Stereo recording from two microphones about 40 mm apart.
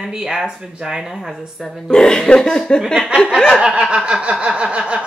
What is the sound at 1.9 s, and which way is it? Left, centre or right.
Speech, centre.